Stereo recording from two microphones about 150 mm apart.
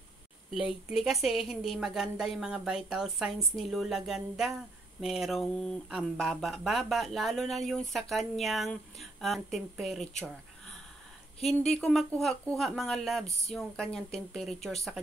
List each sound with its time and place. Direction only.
0.6 s speech: 5° right (ahead or behind)
11.3 s speech: 45° left (ahead or behind)
11.7 s speech: centre (ahead or behind)